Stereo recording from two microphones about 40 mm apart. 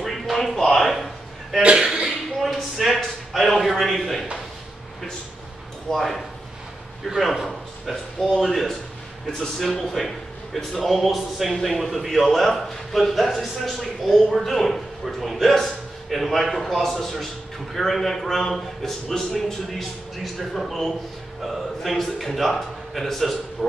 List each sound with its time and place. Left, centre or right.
0.0 s a sound: centre
5.9 s speech: centre
7.4 s a man's voice: centre
20.5 s a man's voice: centre